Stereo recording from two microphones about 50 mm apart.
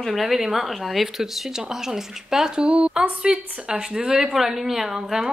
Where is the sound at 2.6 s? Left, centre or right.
Right.